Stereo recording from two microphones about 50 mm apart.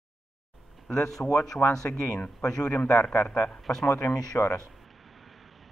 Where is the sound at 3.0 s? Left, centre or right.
Left.